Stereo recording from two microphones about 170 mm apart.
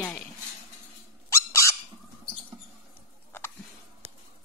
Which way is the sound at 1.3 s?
15° left (ahead or behind).